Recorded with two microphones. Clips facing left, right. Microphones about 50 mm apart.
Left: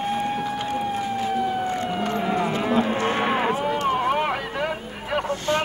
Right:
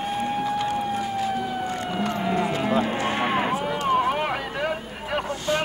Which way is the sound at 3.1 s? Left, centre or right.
Centre.